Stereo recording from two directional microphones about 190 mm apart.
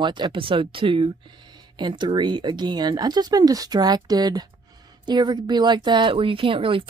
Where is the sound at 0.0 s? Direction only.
25° right (ahead or behind).